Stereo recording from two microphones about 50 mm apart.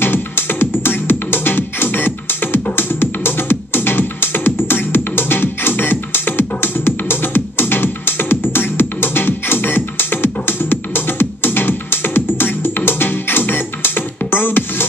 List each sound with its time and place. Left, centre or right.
0.0 s music: left